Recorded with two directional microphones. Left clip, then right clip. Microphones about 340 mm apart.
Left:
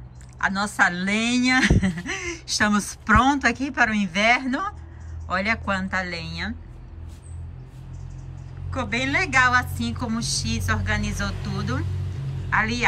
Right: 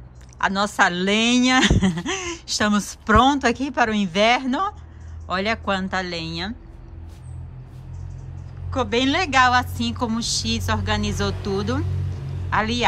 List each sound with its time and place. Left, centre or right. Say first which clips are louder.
0.5 s speech: right 2 dB; centre
8.6 s a man's voice: right 5 dB; centre